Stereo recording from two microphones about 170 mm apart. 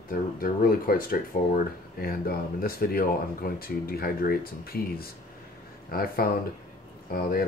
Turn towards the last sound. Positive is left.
turn(degrees=60)  # may be behind; listen again after turning